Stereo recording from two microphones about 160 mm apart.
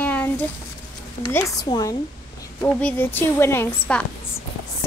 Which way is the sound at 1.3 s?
15° left (ahead or behind).